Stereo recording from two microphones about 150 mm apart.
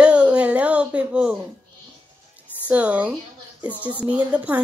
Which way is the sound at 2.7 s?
10° right (ahead or behind).